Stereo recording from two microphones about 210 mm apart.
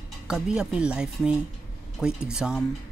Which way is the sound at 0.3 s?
5° right (ahead or behind).